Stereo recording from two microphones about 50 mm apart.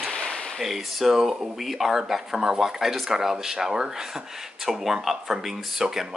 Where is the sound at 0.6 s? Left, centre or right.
Centre.